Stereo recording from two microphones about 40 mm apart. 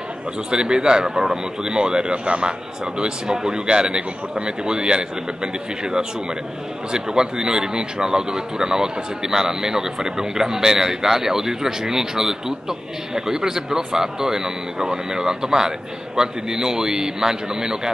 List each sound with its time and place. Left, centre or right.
0.5 s a man's voice: right